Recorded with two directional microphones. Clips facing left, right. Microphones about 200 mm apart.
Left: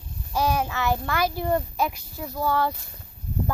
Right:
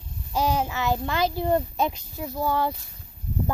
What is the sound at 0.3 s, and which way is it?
Speech, 20° right (ahead or behind).